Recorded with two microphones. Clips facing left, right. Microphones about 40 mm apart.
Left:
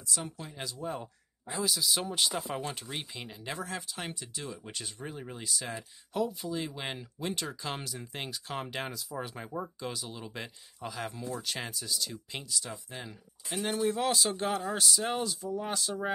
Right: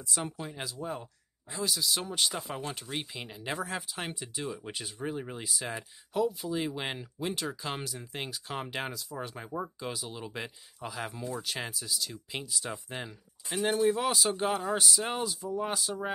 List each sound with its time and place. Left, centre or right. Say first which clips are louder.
0.4 s speech: right 2 dB; centre
12.6 s speech: right 4 dB; right
13.7 s speech: right 1 dB; centre